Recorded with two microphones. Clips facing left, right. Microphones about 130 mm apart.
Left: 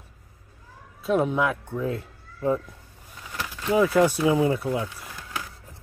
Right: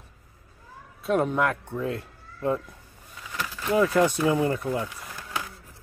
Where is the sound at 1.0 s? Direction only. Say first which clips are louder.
Left 1 dB; centre (ahead or behind).